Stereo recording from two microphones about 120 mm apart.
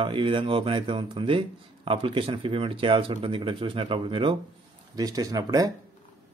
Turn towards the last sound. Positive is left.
turn(degrees=-30)  # may be behind; listen again after turning